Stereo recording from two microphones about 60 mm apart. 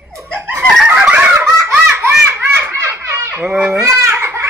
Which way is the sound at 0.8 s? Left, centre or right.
Centre.